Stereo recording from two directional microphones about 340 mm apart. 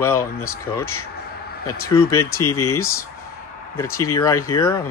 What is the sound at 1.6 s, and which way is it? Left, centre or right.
Speech, centre.